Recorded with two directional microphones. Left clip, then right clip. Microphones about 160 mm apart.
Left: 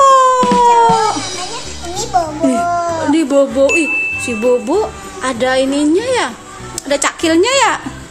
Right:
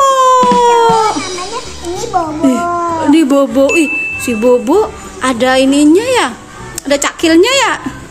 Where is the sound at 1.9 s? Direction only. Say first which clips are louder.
Right 1 dB; 45° left (ahead or behind).